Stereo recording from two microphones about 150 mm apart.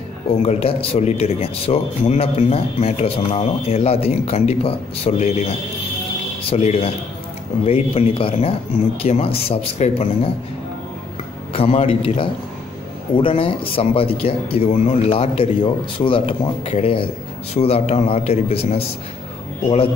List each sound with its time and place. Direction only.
0.4 s speech: 40° left (ahead or behind)
6.5 s speech: 45° left (ahead or behind)
11.5 s speech: 40° left (ahead or behind)